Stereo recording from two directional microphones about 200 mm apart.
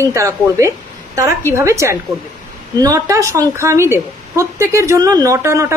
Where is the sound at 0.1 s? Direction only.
15° right (ahead or behind).